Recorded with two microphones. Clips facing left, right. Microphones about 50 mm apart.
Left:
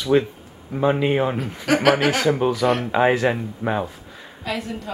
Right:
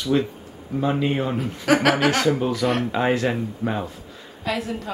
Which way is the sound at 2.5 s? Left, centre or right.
Centre.